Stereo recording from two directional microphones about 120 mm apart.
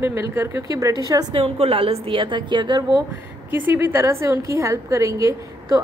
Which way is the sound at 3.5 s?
15° right (ahead or behind).